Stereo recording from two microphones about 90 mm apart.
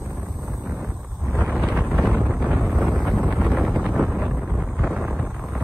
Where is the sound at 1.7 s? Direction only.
Centre (ahead or behind).